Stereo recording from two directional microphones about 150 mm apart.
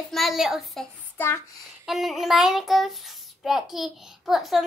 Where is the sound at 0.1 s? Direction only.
Centre (ahead or behind).